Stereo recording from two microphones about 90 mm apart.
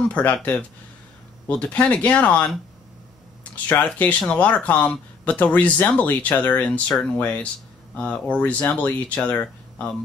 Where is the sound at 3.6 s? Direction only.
15° left (ahead or behind).